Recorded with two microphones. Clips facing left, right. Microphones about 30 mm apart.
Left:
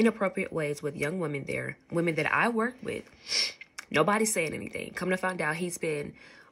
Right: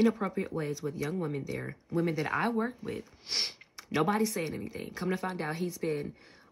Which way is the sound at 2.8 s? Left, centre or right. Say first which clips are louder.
Left 3 dB; left.